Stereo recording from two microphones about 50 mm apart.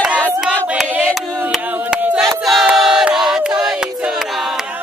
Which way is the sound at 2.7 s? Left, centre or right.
Centre.